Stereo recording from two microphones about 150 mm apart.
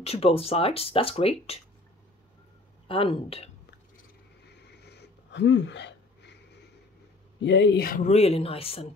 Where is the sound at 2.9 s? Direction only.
40° left (ahead or behind).